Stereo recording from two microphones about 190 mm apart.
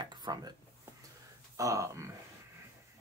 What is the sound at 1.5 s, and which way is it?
Speech, 15° right (ahead or behind).